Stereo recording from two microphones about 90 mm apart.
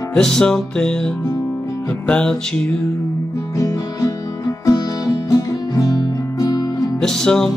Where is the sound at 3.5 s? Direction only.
40° left (ahead or behind).